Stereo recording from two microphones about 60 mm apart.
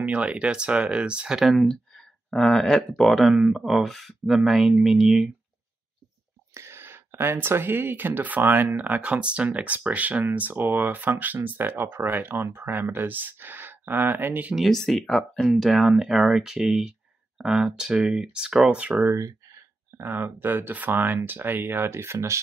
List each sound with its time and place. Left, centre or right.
0.0 s speech: right
1.4 s speech: centre
6.5 s speech: right
14.5 s speech: centre
15.5 s speech: centre
19.1 s a sound: right
20.0 s speech: right